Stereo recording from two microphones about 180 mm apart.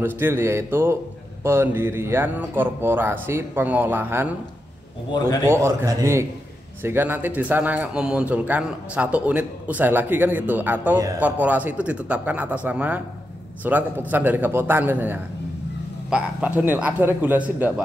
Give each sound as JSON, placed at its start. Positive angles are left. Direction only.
{"t": 0.0, "sound": "a man's voice", "side_deg": -10}
{"t": 5.4, "sound": "a man's voice", "side_deg": -15}